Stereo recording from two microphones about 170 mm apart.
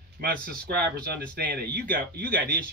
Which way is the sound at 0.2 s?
65° right (ahead or behind).